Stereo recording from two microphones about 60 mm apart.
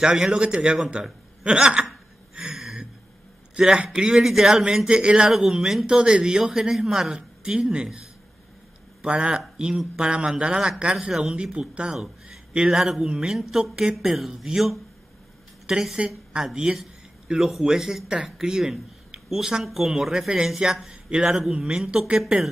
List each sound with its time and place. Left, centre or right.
0.0 s speech: centre
2.5 s a sound: centre
3.5 s speech: centre
5.3 s a man's voice: centre
11.3 s a man's voice: centre
19.2 s a sound: centre
19.6 s speech: centre